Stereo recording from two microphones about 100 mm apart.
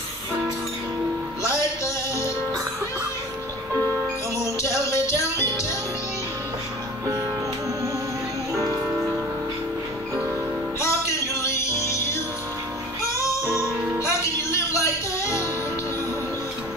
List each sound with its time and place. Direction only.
4.6 s music: 30° left (ahead or behind)
10.8 s music: 30° left (ahead or behind)